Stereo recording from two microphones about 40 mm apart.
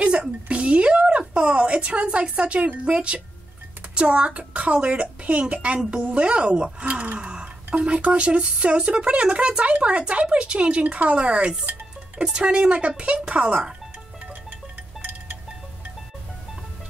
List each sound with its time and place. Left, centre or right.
0.5 s a sound: right
1.0 s speech: right
5.8 s speech: right
12.7 s speech: right